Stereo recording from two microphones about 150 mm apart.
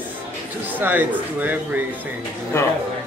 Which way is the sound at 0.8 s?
10° right (ahead or behind).